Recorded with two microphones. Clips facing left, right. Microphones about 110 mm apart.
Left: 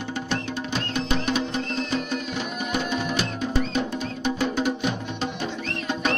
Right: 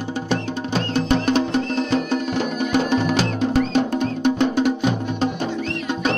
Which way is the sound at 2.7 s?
70° right (ahead or behind).